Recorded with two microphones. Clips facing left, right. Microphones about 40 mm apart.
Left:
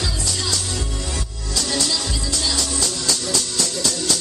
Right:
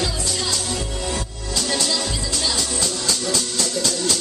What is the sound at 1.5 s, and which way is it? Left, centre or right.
Music, right.